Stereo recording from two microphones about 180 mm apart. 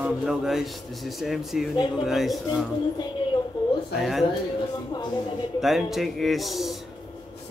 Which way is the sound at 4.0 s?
Centre (ahead or behind).